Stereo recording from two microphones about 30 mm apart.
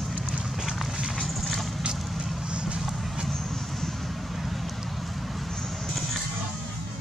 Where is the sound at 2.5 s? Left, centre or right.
Right.